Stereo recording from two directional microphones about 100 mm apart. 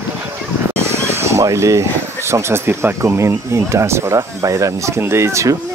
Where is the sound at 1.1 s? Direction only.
30° right (ahead or behind).